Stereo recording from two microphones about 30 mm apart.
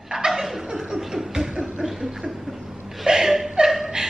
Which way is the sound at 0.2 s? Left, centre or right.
Right.